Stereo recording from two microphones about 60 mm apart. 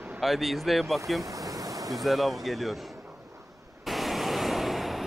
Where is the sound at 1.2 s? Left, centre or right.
Right.